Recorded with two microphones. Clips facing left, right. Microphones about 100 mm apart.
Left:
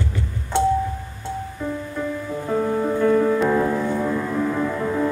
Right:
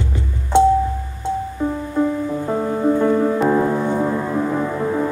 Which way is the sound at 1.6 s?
30° right (ahead or behind).